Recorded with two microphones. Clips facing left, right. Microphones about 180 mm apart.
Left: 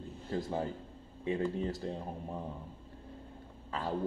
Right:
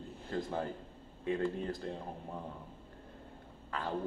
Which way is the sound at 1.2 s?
50° right (ahead or behind).